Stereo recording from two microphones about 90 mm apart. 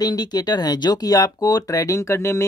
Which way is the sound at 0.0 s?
50° left (ahead or behind).